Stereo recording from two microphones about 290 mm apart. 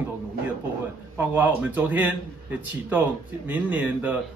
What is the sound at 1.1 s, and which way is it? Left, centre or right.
Speech, centre.